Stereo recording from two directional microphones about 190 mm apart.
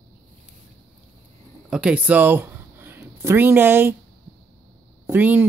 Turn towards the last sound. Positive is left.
turn(degrees=-10)  # may be behind; listen again after turning